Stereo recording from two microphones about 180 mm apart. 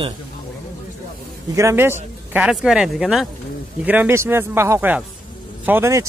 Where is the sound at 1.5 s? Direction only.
15° right (ahead or behind).